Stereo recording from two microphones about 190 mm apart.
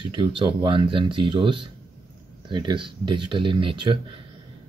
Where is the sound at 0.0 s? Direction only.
25° right (ahead or behind).